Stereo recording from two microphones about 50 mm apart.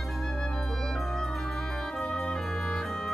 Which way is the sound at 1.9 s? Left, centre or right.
Centre.